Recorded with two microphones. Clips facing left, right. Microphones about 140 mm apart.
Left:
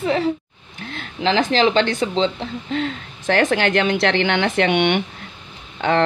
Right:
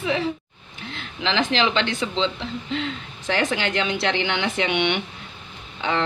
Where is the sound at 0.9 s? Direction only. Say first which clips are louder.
Left 5 dB; 45° left (ahead or behind).